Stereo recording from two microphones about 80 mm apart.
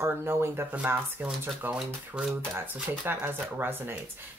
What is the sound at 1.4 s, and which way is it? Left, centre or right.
Speech, right.